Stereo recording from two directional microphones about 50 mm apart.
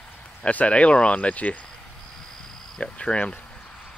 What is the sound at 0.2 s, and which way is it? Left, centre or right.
Speech, left.